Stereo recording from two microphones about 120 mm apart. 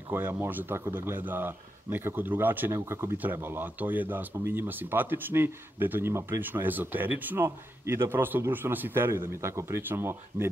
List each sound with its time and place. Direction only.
0.1 s speech: 20° right (ahead or behind)